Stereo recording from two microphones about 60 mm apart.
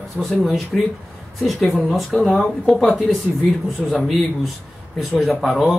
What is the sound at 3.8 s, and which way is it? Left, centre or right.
Speech, centre.